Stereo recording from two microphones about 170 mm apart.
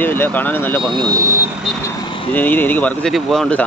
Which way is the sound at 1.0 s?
20° right (ahead or behind).